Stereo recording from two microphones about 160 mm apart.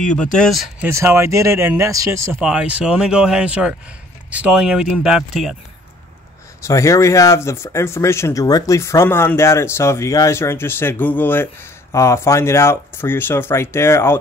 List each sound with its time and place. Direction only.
0.1 s speech: 5° left (ahead or behind)
0.8 s speech: 15° right (ahead or behind)
2.4 s speech: 5° right (ahead or behind)
6.6 s speech: 20° left (ahead or behind)